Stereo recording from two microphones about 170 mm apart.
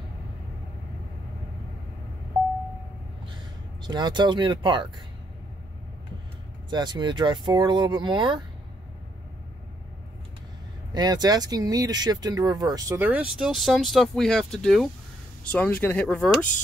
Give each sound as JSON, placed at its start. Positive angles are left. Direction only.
{"t": 3.8, "sound": "speech", "side_deg": -25}
{"t": 6.7, "sound": "speech", "side_deg": -25}
{"t": 10.9, "sound": "speech", "side_deg": -25}